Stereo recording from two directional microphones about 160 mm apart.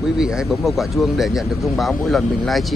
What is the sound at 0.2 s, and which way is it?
Speech, centre (ahead or behind).